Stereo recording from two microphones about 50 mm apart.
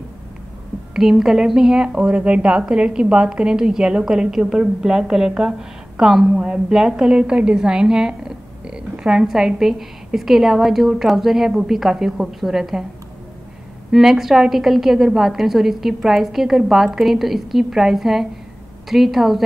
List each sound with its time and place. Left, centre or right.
0.9 s a woman's voice: centre
1.9 s a woman's voice: right; by 12.8 s centre
13.9 s a woman's voice: centre